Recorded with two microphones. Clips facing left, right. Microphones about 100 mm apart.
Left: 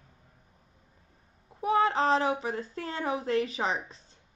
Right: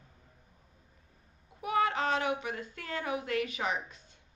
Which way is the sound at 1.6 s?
30° left (ahead or behind).